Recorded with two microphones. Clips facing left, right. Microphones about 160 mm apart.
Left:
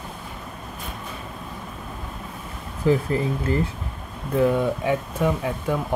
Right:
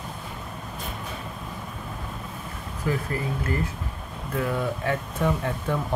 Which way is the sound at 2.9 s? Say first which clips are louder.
Left 7 dB; 25° left (ahead or behind).